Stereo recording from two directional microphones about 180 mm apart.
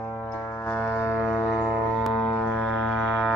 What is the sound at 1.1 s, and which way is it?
Music, centre (ahead or behind).